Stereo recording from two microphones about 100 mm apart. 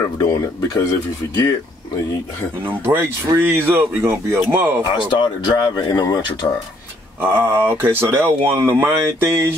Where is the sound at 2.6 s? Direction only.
20° right (ahead or behind).